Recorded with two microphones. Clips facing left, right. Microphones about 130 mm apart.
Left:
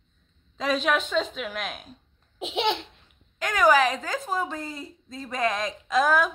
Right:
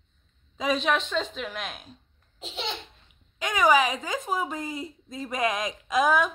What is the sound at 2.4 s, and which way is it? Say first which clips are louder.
Laughter: left 9 dB; 70° left (ahead or behind).